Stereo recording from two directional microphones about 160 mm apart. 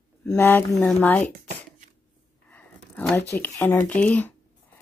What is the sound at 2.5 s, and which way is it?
Speech, 10° left (ahead or behind).